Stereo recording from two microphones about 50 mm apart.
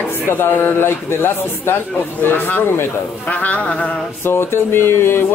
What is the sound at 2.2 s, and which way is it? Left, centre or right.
Speech, left.